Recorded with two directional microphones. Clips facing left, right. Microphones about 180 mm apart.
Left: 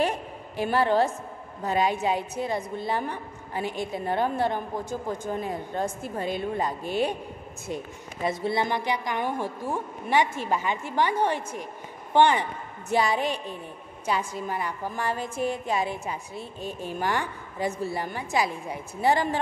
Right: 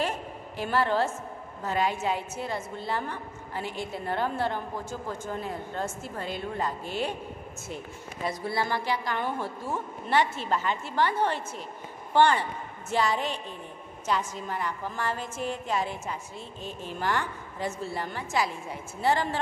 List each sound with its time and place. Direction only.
0.0 s a sound: 15° left (ahead or behind)
1.6 s a woman's voice: 15° left (ahead or behind)
8.3 s a woman's voice: 25° left (ahead or behind)